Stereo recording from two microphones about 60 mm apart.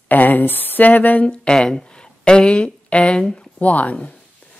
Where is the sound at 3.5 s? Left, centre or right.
Left.